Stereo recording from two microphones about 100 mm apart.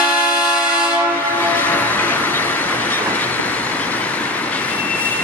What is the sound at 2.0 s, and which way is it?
Train, 20° left (ahead or behind).